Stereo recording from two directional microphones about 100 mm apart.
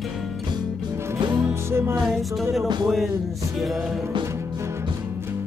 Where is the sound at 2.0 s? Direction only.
5° right (ahead or behind).